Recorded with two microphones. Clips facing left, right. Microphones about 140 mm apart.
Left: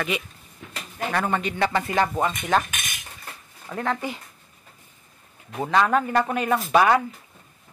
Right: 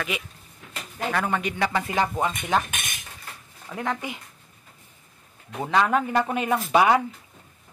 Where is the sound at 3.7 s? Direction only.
15° right (ahead or behind).